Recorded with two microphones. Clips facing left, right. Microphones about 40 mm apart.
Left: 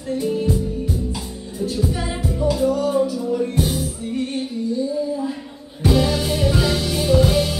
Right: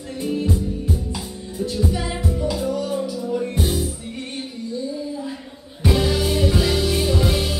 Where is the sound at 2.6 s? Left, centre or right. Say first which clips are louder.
Left 5 dB; left.